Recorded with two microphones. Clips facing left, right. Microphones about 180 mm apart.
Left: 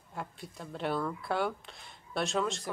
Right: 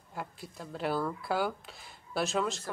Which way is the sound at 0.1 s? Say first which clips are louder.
Even; centre (ahead or behind).